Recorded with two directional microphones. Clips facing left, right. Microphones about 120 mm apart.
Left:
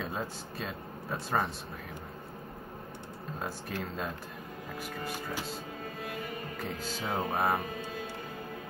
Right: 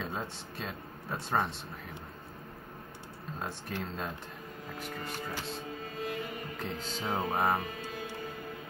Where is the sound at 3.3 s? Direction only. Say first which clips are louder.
Left 1 dB; 5° left (ahead or behind).